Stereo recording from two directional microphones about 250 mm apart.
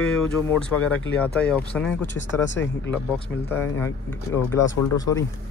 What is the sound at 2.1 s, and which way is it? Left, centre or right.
Speech, left.